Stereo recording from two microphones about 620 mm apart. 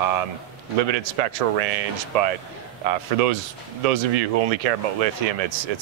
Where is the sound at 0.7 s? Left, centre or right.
Right.